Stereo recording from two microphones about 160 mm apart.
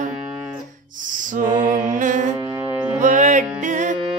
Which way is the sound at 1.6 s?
55° right (ahead or behind).